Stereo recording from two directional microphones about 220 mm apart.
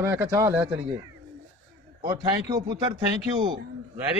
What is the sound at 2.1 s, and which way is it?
Speech, 20° right (ahead or behind).